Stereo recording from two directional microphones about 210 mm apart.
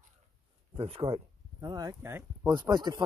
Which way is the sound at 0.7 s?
25° right (ahead or behind).